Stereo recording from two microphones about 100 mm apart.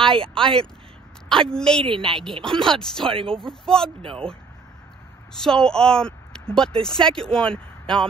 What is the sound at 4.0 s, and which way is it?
Speech, 65° right (ahead or behind).